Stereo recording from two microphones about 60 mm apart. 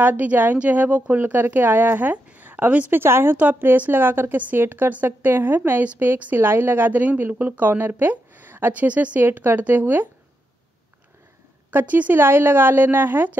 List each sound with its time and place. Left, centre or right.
0.0 s speech: right
1.2 s speech: right
3.0 s speech: right
9.2 s speech: right
11.7 s speech: right